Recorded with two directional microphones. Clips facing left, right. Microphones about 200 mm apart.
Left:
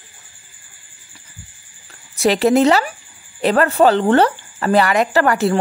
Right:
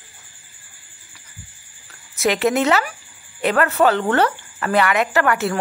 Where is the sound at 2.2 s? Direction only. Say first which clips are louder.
Left 5 dB; 30° left (ahead or behind).